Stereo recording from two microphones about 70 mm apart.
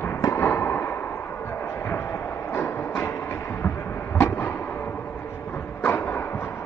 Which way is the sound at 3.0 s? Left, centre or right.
Left.